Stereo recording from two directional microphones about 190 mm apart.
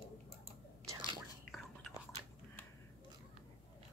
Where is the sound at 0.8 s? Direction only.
25° right (ahead or behind).